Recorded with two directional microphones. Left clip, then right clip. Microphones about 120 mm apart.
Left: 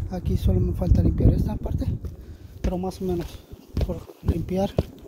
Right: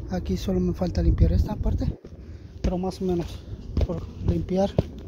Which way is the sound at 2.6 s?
30° left (ahead or behind).